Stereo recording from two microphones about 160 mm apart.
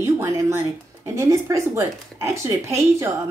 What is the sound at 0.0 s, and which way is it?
Speech, 20° right (ahead or behind).